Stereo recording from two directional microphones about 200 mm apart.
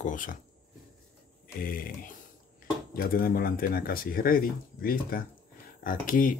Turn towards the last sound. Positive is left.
turn(degrees=45)  # may be behind; listen again after turning